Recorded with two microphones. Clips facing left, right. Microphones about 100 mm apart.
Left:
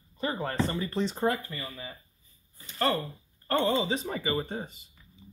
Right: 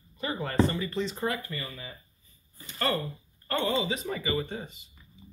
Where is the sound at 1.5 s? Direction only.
20° left (ahead or behind).